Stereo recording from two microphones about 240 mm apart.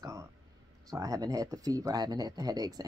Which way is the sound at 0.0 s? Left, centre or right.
Centre.